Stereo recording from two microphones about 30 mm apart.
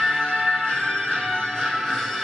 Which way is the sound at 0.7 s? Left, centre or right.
Left.